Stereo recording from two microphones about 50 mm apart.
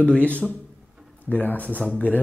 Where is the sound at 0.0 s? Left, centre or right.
Left.